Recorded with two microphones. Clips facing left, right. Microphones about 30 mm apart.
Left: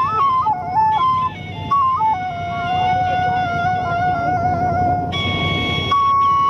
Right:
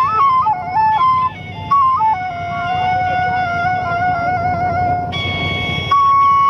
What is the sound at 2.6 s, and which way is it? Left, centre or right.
Vehicle, centre.